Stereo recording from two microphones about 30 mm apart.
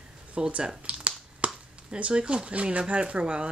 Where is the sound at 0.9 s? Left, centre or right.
Right.